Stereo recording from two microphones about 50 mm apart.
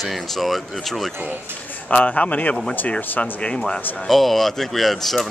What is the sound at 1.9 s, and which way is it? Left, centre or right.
Speech, left.